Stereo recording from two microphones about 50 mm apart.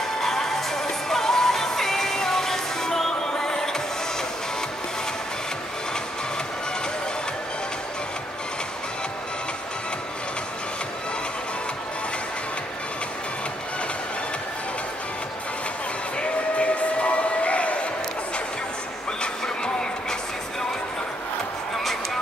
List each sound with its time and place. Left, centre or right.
0.2 s music: centre
16.2 s a sound: left
19.2 s vehicle: centre